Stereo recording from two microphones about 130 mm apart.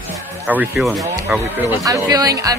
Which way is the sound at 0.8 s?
Centre (ahead or behind).